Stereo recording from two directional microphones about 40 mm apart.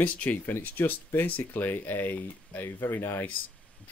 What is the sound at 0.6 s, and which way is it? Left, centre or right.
Speech, left.